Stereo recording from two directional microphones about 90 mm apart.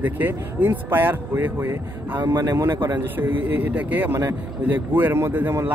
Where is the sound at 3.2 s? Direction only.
20° right (ahead or behind).